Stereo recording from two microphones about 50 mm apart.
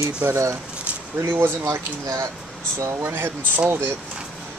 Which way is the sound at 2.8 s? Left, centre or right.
Right.